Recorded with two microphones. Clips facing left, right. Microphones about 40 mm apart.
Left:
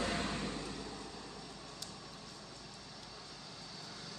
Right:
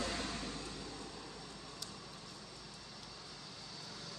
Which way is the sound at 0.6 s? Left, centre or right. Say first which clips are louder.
Left 2 dB; centre.